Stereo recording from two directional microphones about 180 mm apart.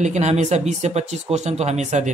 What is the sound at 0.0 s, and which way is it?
A man's voice, 40° right (ahead or behind).